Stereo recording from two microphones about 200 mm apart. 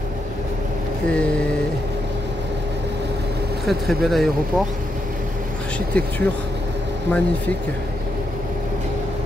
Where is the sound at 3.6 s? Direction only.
Centre (ahead or behind).